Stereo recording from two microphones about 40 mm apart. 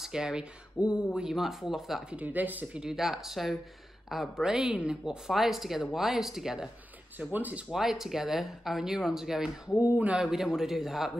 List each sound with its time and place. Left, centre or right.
0.0 s speech: centre
0.4 s speech: right
1.1 s speech: centre
1.4 s speech: centre
2.1 s speech: right
2.8 s speech: centre
4.4 s speech: centre
5.3 s speech: centre
7.2 s speech: right
7.7 s speech: centre
9.8 s speech: right
10.1 s speech: centre
10.4 s speech: centre